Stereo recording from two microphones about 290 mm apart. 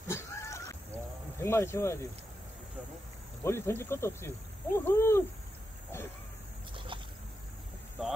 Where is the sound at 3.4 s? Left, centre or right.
Centre.